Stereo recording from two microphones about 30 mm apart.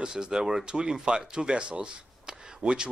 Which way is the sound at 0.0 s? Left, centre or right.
Right.